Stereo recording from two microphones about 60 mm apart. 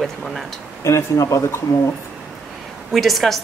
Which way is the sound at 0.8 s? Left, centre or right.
Left.